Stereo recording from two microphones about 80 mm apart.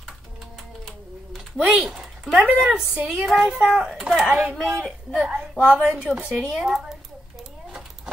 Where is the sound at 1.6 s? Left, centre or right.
Centre.